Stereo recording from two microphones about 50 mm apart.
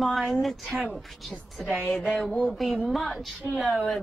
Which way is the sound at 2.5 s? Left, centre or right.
Centre.